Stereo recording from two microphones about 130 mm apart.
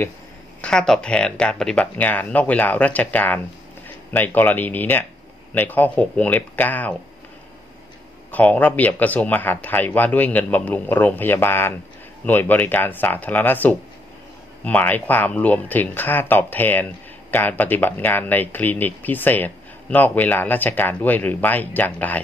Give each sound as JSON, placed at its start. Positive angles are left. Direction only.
{"t": 0.6, "sound": "speech", "side_deg": 5}
{"t": 8.3, "sound": "speech", "side_deg": 10}